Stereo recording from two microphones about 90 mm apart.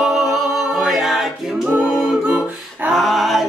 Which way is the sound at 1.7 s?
15° right (ahead or behind).